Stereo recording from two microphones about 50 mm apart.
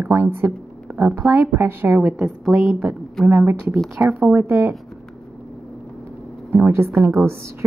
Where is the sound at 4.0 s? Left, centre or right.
Right.